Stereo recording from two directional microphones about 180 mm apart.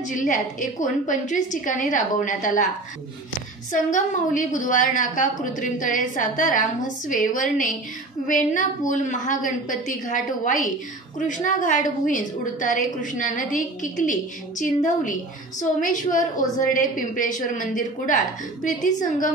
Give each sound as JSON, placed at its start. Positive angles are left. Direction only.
{"t": 0.1, "sound": "a woman's voice", "side_deg": 45}
{"t": 3.7, "sound": "a woman's voice", "side_deg": 45}